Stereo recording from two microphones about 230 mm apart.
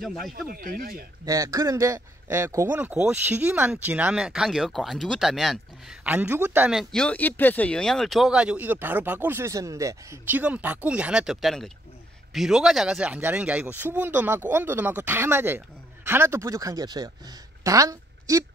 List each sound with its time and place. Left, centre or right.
0.0 s speech: centre
0.5 s speech: right
1.2 s a woman's voice: centre